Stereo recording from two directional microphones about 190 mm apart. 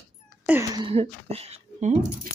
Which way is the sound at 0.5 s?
15° right (ahead or behind).